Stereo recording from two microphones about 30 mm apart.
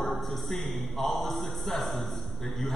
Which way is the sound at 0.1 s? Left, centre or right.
Centre.